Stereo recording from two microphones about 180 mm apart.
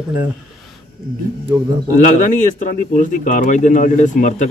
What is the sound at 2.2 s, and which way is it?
Speech, 45° left (ahead or behind).